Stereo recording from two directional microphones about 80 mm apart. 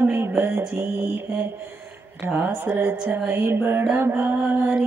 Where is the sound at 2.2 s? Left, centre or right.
Right.